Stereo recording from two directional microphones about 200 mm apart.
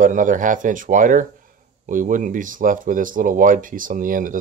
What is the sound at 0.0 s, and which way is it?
Speech, 40° right (ahead or behind).